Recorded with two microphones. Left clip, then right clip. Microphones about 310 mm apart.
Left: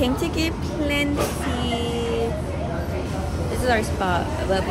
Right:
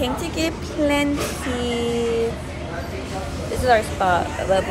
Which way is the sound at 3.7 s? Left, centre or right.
Centre.